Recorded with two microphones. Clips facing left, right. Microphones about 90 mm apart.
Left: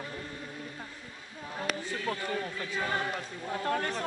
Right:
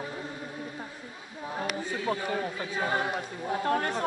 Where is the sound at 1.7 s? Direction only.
15° right (ahead or behind).